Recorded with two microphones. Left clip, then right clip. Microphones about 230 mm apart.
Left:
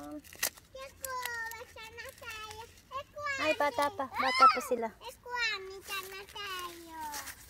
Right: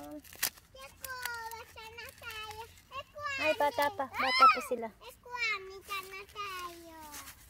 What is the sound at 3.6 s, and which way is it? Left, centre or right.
Speech, centre.